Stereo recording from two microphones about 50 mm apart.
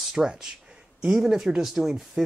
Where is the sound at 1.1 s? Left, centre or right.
Centre.